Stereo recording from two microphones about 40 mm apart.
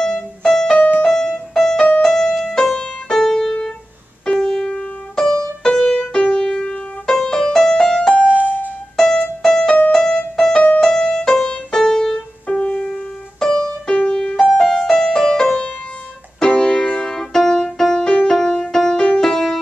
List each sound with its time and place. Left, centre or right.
0.0 s music: centre
2.7 s music: left
3.2 s music: centre
8.3 s music: right
8.9 s music: centre
9.8 s keyboard: left
10.8 s music: left
12.9 s music: centre
13.8 s music: left
14.1 s music: centre
15.4 s music: left; by 18.9 s centre
18.9 s music: left